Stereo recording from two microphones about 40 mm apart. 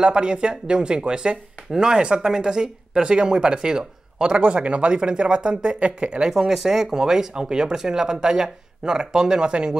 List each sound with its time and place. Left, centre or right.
0.0 s speech: right
6.3 s speech: centre